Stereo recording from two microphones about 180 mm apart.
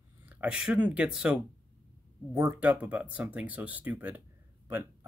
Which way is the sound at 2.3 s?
15° right (ahead or behind).